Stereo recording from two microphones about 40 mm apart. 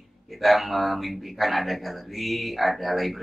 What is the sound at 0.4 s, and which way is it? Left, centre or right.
Speech, centre.